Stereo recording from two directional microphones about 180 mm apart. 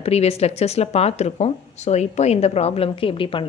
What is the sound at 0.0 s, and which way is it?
Speech, 35° left (ahead or behind).